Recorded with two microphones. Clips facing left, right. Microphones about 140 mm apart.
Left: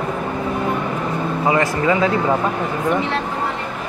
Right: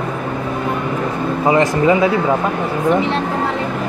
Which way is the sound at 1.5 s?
20° right (ahead or behind).